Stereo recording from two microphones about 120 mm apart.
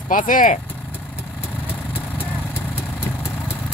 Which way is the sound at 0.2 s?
90° left.